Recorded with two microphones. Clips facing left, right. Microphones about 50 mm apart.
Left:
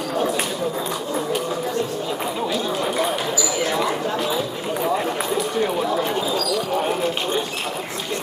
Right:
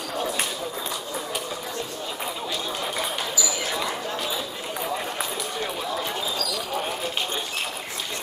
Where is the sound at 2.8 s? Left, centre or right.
Centre.